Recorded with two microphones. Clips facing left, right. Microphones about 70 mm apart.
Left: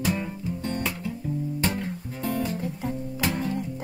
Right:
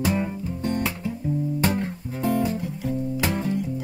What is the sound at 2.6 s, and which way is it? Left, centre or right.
Music, left.